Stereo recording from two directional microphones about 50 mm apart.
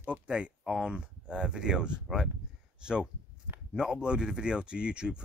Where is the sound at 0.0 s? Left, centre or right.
Right.